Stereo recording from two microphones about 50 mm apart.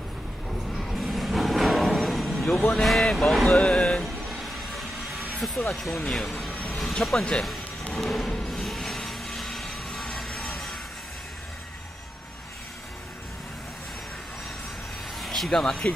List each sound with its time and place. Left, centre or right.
0.7 s music: centre
2.4 s speech: centre
3.5 s vehicle: left
4.3 s train: centre
5.4 s speech: centre
6.5 s vehicle: left
6.8 s speech: centre
7.9 s a sound: centre
15.1 s a sound: centre
15.5 s speech: centre